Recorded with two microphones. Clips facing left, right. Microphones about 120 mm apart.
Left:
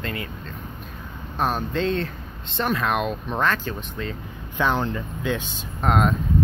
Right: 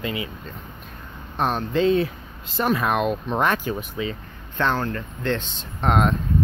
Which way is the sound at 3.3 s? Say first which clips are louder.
Even; 15° right (ahead or behind).